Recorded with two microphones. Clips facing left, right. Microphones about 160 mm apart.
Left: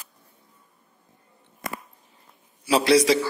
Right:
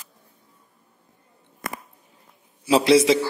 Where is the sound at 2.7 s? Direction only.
25° right (ahead or behind).